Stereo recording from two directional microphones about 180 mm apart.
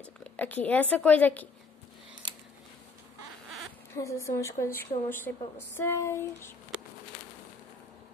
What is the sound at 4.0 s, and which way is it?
Speech, 15° left (ahead or behind).